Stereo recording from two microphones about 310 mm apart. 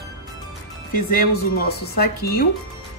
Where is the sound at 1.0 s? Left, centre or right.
Left.